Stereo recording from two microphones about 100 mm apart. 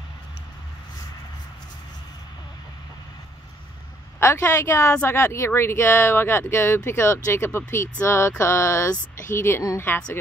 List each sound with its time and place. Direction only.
4.2 s speech: 25° left (ahead or behind)